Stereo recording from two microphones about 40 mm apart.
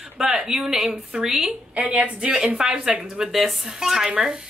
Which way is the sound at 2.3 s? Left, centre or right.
Right.